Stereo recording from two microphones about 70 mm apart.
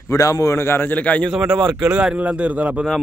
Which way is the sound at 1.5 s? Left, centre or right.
Right.